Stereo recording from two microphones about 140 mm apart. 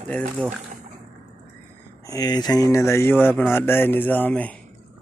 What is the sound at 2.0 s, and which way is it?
Speech, 25° left (ahead or behind).